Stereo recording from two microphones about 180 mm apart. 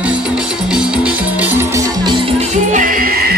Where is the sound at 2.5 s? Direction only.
45° right (ahead or behind).